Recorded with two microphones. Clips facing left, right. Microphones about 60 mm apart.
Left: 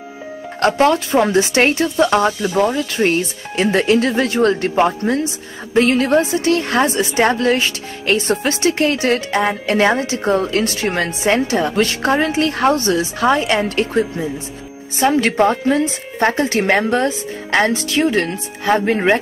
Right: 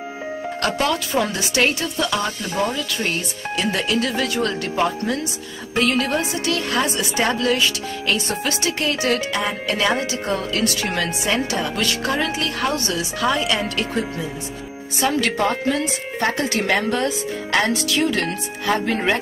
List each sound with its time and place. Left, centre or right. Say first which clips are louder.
0.6 s speech: left 8 dB; left